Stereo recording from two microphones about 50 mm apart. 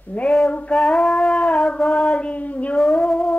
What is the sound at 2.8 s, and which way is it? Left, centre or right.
Music, centre.